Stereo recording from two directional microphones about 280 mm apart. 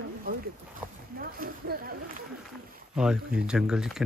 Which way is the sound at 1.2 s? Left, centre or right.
Right.